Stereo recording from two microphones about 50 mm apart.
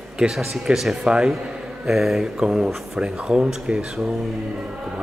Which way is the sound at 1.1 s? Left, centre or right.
Centre.